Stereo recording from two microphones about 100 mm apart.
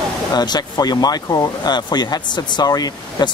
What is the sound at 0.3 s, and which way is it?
Speech, 45° left (ahead or behind).